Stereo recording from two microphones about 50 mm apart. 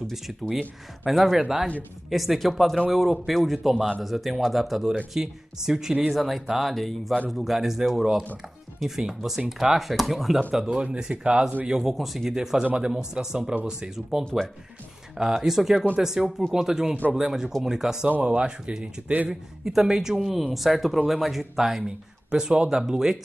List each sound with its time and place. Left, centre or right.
0.1 s speech: centre
10.7 s speech: centre
11.6 s speech: centre
18.2 s speech: right
19.6 s speech: centre
22.3 s speech: centre